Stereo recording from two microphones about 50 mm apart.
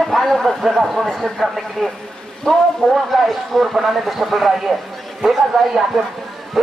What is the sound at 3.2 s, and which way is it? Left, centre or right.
Speech, centre.